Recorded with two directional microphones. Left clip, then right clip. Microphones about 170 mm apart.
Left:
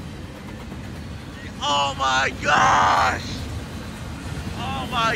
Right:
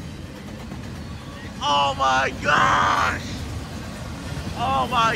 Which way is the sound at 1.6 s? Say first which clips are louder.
Right 2 dB; centre (ahead or behind).